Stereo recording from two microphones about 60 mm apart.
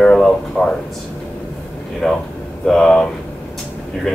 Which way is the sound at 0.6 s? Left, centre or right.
Centre.